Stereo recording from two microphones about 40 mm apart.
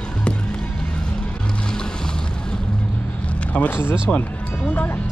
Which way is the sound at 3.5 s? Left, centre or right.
Left.